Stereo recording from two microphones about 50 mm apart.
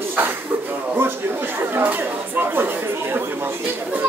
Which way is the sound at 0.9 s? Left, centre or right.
Right.